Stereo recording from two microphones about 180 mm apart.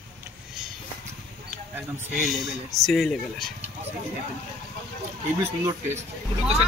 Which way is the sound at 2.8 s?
Centre (ahead or behind).